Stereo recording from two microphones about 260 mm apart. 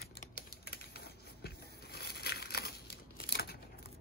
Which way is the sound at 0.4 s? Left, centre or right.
Left.